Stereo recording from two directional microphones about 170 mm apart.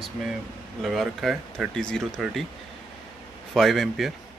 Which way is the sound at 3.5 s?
Centre (ahead or behind).